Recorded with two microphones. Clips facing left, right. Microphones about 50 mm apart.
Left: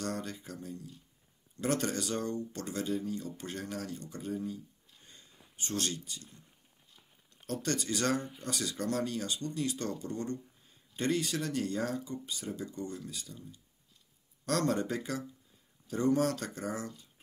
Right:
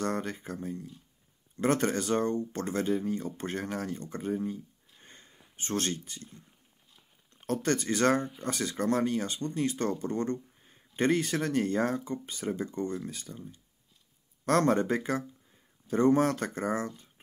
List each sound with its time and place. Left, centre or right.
0.0 s speech: right
5.0 s a sound: right
5.6 s speech: right